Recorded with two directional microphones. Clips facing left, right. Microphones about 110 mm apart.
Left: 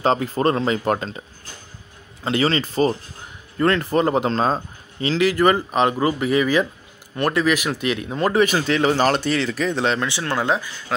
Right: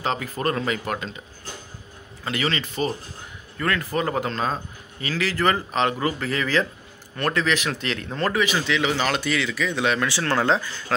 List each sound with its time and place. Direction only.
0.0 s speech: 35° left (ahead or behind)
2.2 s speech: 30° left (ahead or behind)
5.0 s speech: 20° left (ahead or behind)
8.5 s speech: 40° left (ahead or behind)
10.0 s speech: 15° left (ahead or behind)